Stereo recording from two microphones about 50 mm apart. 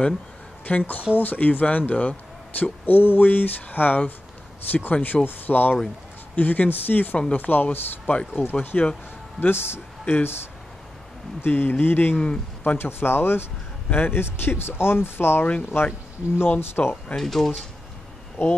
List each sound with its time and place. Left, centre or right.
0.7 s speech: left
2.6 s speech: left
8.5 s speech: left
9.4 s speech: left
11.4 s speech: left
13.8 s speech: left
17.1 s speech: centre
18.4 s speech: left